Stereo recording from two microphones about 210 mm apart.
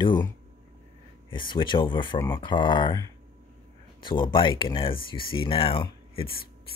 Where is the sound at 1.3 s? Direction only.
25° left (ahead or behind).